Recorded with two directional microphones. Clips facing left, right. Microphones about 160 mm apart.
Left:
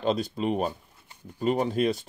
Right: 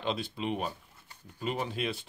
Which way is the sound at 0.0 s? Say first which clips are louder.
Left 7 dB; 40° left (ahead or behind).